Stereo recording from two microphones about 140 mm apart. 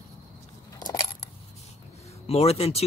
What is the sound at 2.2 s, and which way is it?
Speech, 45° left (ahead or behind).